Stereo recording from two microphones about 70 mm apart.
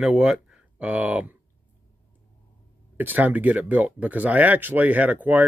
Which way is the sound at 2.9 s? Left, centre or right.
Right.